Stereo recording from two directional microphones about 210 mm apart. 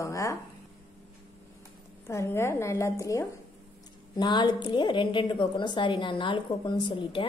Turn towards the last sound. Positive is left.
turn(degrees=25)  # may be behind; listen again after turning